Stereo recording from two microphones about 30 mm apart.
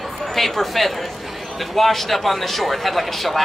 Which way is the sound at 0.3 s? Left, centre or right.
Centre.